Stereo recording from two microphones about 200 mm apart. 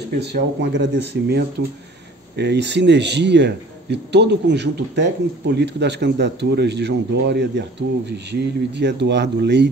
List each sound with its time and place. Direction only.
0.2 s a man's voice: 60° right (ahead or behind)